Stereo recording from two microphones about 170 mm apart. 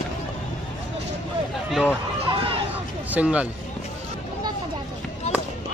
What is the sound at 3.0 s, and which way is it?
Speech, 10° right (ahead or behind).